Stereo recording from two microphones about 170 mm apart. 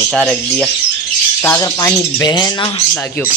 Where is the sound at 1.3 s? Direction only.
15° left (ahead or behind).